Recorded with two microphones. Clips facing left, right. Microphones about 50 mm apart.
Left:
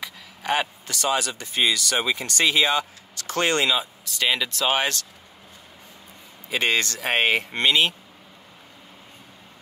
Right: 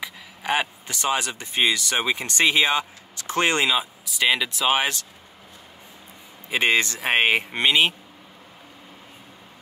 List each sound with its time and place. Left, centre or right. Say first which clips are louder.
0.0 s a sound: right 1 dB; centre
0.8 s speech: even; right
6.5 s speech: right 2 dB; centre